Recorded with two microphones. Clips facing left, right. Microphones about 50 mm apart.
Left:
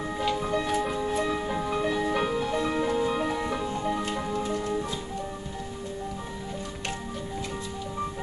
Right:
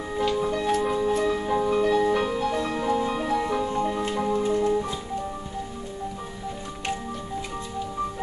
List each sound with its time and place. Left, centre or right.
0.2 s music: centre
4.4 s music: centre